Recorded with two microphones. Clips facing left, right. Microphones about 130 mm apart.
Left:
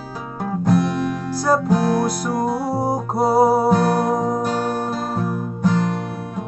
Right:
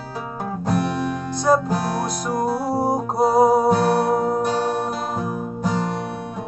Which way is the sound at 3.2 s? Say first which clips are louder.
Even; 20° right (ahead or behind).